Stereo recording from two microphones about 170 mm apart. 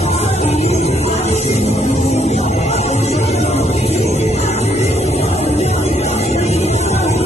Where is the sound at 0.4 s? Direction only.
40° left (ahead or behind).